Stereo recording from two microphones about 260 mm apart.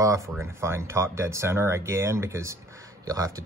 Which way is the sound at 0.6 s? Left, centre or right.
Centre.